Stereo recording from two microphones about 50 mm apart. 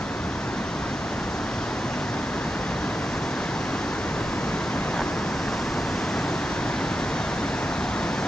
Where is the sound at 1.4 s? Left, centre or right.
Centre.